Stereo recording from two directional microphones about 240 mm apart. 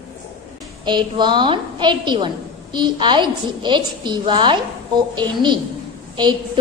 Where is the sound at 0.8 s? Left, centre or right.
Centre.